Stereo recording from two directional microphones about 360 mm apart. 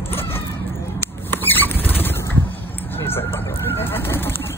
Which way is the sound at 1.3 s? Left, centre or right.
Centre.